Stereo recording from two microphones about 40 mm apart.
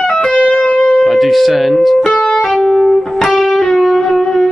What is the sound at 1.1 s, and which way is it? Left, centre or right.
Speech, centre.